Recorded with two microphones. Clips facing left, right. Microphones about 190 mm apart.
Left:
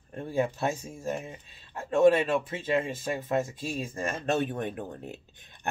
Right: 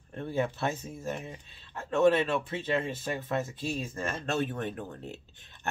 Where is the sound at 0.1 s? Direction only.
10° left (ahead or behind).